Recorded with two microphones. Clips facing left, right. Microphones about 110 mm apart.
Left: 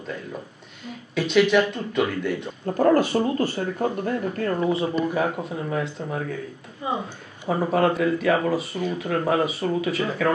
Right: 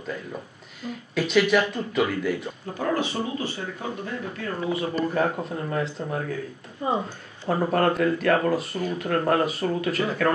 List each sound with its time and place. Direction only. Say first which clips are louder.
0.8 s speech: even; centre (ahead or behind)
2.6 s speech: left 9 dB; 45° left (ahead or behind)
4.9 s speech: left 1 dB; 5° left (ahead or behind)
7.4 s speech: left 1 dB; centre (ahead or behind)